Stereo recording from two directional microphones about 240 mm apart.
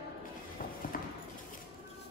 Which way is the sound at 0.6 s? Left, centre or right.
Left.